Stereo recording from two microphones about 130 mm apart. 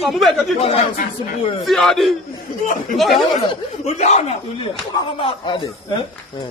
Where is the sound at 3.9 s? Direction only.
60° left (ahead or behind).